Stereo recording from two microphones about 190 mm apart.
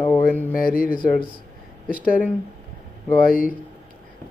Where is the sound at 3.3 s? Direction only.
50° left (ahead or behind).